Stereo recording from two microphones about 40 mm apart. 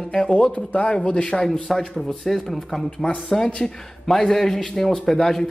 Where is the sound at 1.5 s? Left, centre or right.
Centre.